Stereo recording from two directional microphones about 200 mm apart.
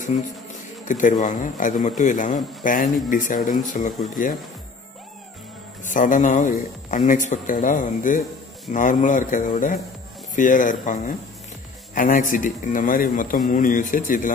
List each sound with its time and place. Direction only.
0.1 s a man's voice: 35° left (ahead or behind)
5.9 s a man's voice: 40° left (ahead or behind)